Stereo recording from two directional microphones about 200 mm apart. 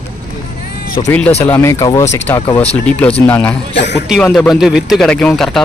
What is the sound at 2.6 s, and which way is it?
Speech, 35° left (ahead or behind).